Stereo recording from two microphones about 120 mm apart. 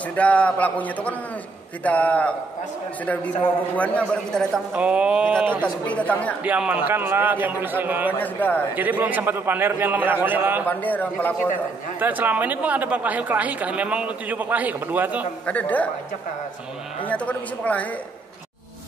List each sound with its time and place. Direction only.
0.1 s a man's voice: 10° left (ahead or behind)
3.7 s a man's voice: 10° left (ahead or behind)
4.7 s speech: 10° right (ahead or behind)
5.6 s a man's voice: 10° left (ahead or behind)
6.4 s speech: 10° right (ahead or behind)
8.2 s a man's voice: 15° left (ahead or behind)
8.7 s speech: 15° right (ahead or behind)
10.7 s a man's voice: 15° left (ahead or behind)
12.0 s speech: 15° right (ahead or behind)
15.4 s a man's voice: 10° left (ahead or behind)
17.1 s a man's voice: 10° left (ahead or behind)